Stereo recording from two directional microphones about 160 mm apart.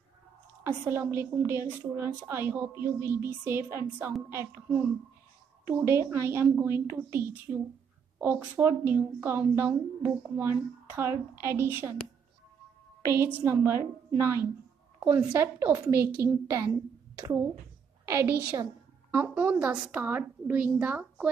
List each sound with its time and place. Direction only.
0.7 s a woman's voice: 15° right (ahead or behind)
5.8 s a woman's voice: 15° right (ahead or behind)
13.0 s a woman's voice: 15° right (ahead or behind)
18.0 s a woman's voice: 15° right (ahead or behind)